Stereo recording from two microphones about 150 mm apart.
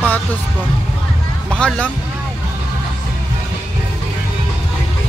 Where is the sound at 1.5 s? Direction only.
5° left (ahead or behind).